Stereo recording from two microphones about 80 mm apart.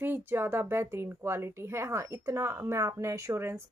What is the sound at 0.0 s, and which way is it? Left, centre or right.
A woman's voice, right.